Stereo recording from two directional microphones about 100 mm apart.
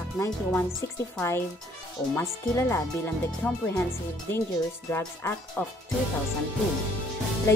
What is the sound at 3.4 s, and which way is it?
Speech, 15° left (ahead or behind).